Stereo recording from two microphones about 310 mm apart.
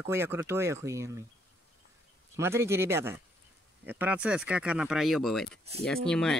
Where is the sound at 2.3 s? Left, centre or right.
Centre.